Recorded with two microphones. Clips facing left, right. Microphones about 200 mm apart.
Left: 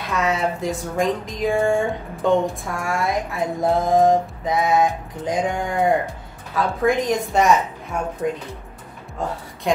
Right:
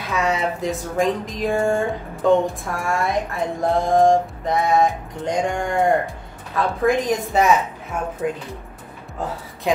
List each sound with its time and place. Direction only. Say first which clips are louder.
0.1 s music: even; centre (ahead or behind)